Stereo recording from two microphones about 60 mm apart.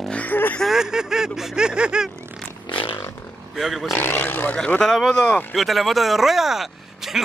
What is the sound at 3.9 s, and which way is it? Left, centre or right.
Speech, left.